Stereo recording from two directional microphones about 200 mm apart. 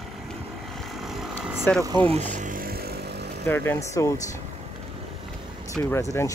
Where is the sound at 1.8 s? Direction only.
25° right (ahead or behind); by 3.3 s 55° right (ahead or behind).